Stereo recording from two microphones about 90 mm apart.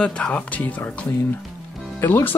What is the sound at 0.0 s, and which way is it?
Speech, 10° left (ahead or behind).